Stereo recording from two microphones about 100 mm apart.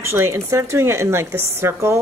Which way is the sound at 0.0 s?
25° right (ahead or behind).